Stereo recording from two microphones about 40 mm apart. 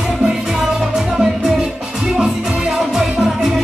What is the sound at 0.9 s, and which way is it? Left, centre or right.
Music, centre.